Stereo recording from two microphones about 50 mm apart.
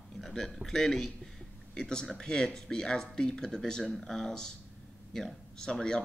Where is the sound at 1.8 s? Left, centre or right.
Centre.